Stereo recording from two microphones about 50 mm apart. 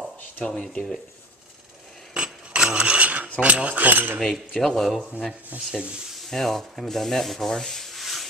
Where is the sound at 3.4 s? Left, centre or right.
Right.